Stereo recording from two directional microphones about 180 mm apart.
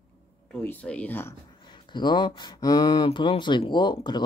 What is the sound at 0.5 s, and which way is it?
Speech, 5° left (ahead or behind).